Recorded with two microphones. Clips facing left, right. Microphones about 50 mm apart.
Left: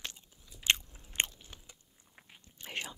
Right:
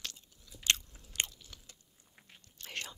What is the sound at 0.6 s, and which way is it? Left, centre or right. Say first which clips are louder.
Biting: left 2 dB; centre.